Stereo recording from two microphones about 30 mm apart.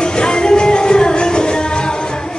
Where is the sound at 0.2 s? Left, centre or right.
Left.